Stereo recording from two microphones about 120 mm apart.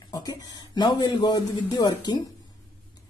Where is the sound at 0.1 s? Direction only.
35° left (ahead or behind).